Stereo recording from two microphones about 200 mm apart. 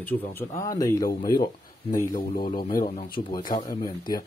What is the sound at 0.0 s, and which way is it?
Speech, 10° left (ahead or behind).